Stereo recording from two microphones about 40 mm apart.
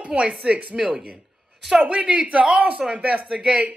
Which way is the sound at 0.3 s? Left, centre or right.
Right.